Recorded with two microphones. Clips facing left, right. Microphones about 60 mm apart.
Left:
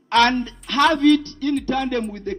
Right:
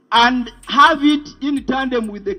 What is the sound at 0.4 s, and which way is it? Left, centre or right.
A man's voice, right.